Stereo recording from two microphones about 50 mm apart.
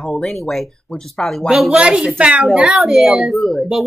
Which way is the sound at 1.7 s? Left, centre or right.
Centre.